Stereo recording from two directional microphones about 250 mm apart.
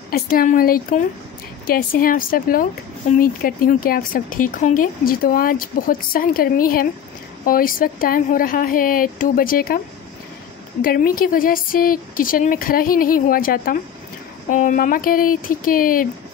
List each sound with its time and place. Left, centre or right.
0.1 s speech: left
10.8 s speech: left